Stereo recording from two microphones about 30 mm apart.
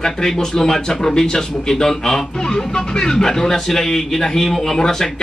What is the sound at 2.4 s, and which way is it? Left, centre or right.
A man's voice, left.